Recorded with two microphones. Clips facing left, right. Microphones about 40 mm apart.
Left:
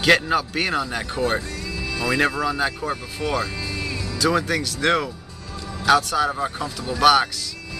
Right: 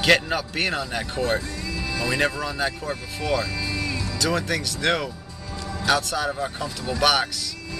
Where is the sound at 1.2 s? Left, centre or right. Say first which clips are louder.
Left 1 dB; centre.